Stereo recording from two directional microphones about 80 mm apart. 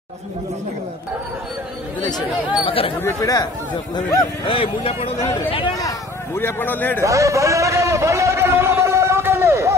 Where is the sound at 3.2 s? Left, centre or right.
Left.